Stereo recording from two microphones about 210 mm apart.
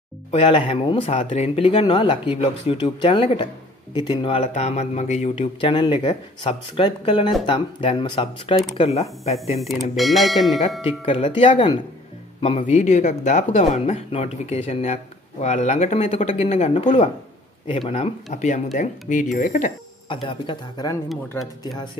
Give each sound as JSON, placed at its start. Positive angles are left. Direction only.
{"t": 0.3, "sound": "speech", "side_deg": 25}
{"t": 9.6, "sound": "speech", "side_deg": 0}
{"t": 11.1, "sound": "speech", "side_deg": 30}
{"t": 20.1, "sound": "speech", "side_deg": 25}
{"t": 21.1, "sound": "speech", "side_deg": 0}